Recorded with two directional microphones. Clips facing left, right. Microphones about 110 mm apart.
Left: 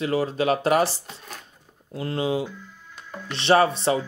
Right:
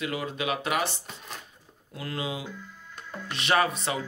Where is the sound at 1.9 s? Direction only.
30° left (ahead or behind).